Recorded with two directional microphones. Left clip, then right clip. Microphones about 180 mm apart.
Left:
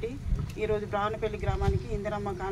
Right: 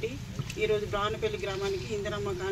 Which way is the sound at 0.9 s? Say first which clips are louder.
Even; 25° left (ahead or behind).